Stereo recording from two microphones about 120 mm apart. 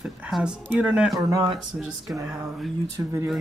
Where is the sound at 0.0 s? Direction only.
5° right (ahead or behind).